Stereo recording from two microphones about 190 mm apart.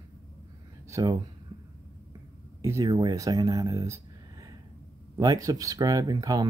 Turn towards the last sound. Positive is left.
turn(degrees=-20)  # may be behind; listen again after turning